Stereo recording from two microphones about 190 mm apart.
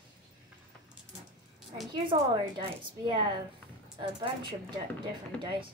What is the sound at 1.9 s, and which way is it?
A woman's voice, 25° right (ahead or behind).